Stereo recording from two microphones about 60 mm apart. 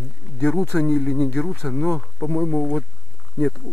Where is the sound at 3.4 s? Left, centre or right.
Centre.